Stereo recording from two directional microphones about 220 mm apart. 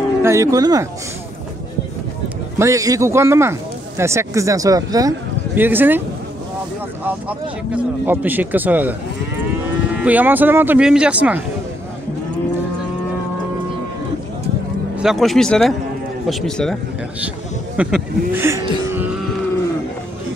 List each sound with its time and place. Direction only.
0.2 s speech: 15° right (ahead or behind)
2.6 s speech: 15° right (ahead or behind)
7.1 s speech: 5° right (ahead or behind)
10.0 s speech: 10° right (ahead or behind)
15.0 s speech: centre (ahead or behind)
17.7 s speech: 10° right (ahead or behind)